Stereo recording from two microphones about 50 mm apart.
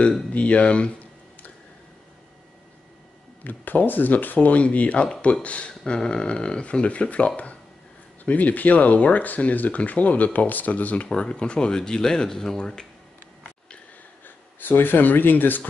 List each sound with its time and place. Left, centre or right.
0.3 s speech: left
3.4 s speech: left
11.1 s speech: centre
14.2 s speech: left